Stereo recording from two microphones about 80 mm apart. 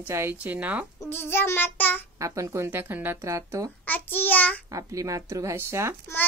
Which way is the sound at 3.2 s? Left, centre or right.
Right.